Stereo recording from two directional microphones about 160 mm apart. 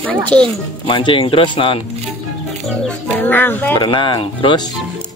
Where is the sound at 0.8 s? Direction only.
30° left (ahead or behind).